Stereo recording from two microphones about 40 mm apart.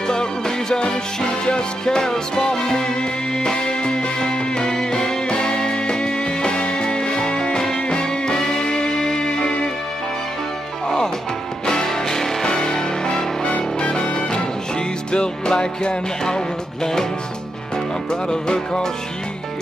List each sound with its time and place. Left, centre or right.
0.0 s music: centre
11.6 s music: centre
13.5 s music: left; by 17.0 s centre
18.3 s music: centre